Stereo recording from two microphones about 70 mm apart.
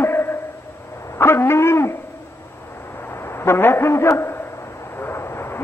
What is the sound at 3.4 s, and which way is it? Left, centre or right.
A man's voice, left.